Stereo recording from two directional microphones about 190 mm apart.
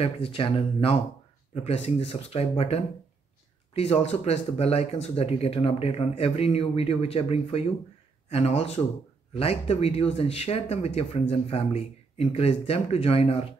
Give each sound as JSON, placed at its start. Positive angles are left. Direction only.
{"t": 0.0, "sound": "speech", "side_deg": 30}